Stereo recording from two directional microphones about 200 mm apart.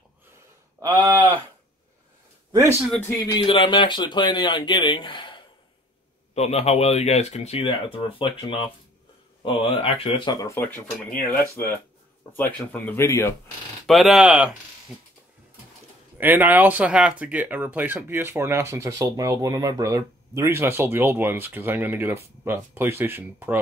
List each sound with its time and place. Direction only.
0.7 s a sound: 15° right (ahead or behind)
2.5 s speech: 15° right (ahead or behind)
2.8 s speech: 5° left (ahead or behind)
3.4 s speech: 25° left (ahead or behind)
13.8 s speech: centre (ahead or behind)
16.2 s speech: 10° right (ahead or behind)